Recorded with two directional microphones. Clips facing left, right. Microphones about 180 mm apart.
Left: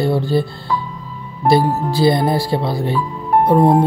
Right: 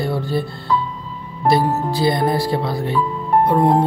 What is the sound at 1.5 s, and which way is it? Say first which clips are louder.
Speech: left 2 dB; 30° left (ahead or behind).